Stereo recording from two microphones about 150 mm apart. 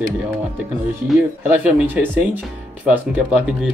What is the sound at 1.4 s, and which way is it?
Speech, 10° right (ahead or behind).